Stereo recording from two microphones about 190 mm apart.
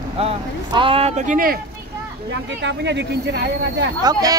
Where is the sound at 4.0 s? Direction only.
20° right (ahead or behind).